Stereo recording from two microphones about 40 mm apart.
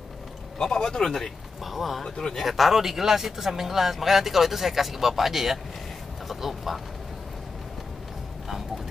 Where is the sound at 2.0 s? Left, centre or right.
Left.